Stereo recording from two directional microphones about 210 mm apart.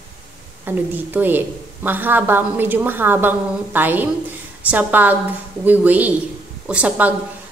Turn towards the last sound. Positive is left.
turn(degrees=-5)  # may be behind; listen again after turning